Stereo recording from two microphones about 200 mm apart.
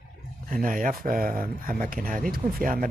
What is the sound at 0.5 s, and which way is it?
Speech, 40° right (ahead or behind).